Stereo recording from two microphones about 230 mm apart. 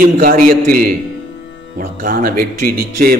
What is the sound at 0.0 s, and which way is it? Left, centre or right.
A man's voice, right.